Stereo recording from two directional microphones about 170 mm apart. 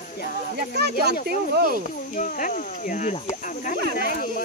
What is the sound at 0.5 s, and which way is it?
Speech, 75° right (ahead or behind).